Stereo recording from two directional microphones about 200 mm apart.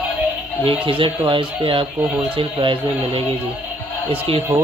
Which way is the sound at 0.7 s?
25° right (ahead or behind).